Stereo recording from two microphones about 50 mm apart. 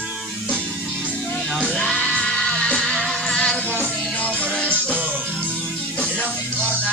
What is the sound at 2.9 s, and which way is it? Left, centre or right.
Music, centre.